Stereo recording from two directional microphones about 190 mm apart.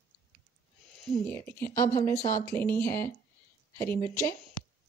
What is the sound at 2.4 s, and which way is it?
Speech, 10° left (ahead or behind).